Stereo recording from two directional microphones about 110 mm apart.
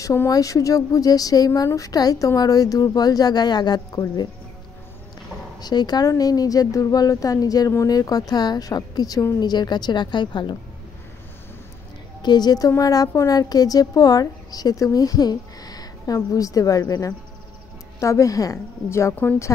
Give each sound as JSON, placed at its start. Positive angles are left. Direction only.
{"t": 0.0, "sound": "a woman's voice", "side_deg": 30}
{"t": 5.6, "sound": "a woman's voice", "side_deg": 40}
{"t": 12.2, "sound": "a woman's voice", "side_deg": 40}